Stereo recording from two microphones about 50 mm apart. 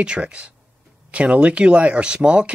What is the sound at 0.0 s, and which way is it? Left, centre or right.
Speech, right.